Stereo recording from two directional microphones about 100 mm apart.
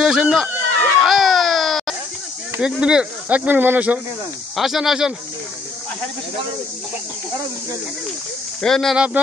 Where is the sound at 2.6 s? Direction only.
10° right (ahead or behind).